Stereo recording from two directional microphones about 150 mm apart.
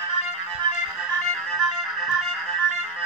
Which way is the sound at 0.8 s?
Centre (ahead or behind).